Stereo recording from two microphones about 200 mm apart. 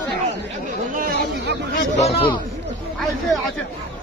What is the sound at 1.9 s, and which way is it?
Speech, 30° left (ahead or behind).